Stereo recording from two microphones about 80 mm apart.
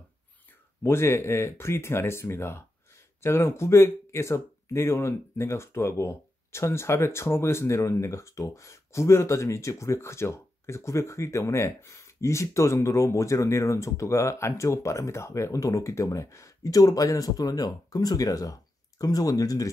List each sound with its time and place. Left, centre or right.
0.8 s speech: left